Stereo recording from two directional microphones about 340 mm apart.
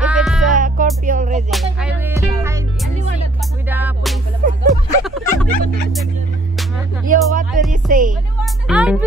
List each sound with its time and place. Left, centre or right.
0.0 s music: centre
0.6 s music: right
1.5 s music: centre
3.6 s music: centre
7.1 s music: right
8.6 s music: centre